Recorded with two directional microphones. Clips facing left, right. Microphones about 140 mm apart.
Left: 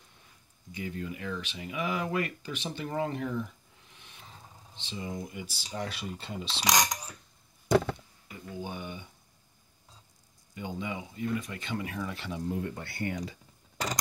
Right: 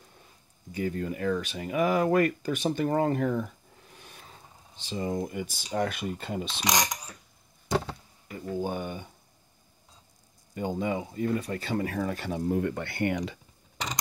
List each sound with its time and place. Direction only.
0.7 s speech: 45° right (ahead or behind)
8.3 s speech: 45° right (ahead or behind)
10.5 s speech: 45° right (ahead or behind); by 13.4 s 75° right (ahead or behind)